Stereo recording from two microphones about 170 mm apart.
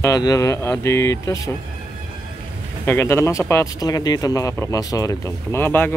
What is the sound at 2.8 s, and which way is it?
Speech, 15° left (ahead or behind).